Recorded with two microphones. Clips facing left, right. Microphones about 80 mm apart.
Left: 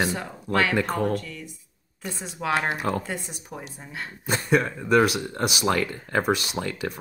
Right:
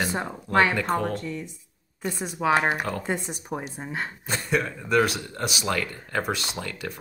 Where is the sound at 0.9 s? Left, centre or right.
Right.